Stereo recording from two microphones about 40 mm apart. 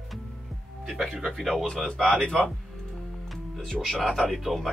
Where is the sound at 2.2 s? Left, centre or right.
Left.